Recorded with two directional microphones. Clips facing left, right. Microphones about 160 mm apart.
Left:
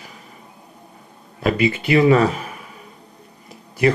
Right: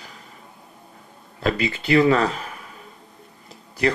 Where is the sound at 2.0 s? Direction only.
Centre (ahead or behind).